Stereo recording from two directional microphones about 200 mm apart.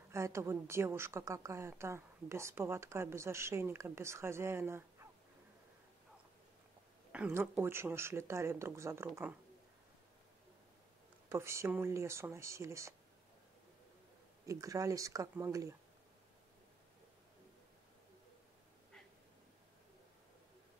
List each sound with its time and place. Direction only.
0.1 s a woman's voice: 15° right (ahead or behind)
7.1 s a woman's voice: 10° right (ahead or behind)
11.3 s a woman's voice: 15° right (ahead or behind)
14.4 s a woman's voice: 15° right (ahead or behind)